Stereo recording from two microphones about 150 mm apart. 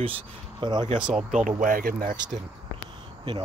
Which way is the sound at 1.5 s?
60° right (ahead or behind).